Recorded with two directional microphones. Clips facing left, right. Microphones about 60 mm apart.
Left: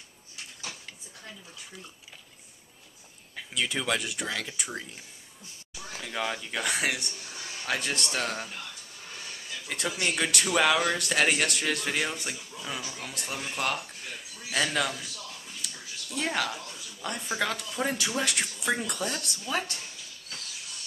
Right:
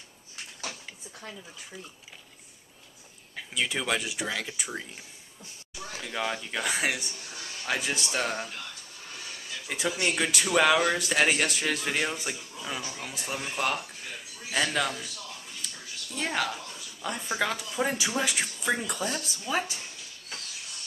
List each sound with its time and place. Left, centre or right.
3.3 s speech: centre
5.9 s speech: centre